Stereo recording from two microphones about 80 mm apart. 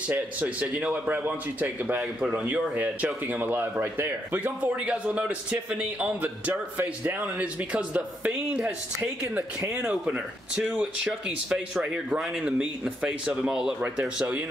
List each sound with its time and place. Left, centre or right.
0.1 s speech: centre
2.0 s speech: centre